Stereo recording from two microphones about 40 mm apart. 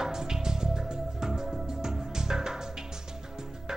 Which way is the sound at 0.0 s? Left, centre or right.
Centre.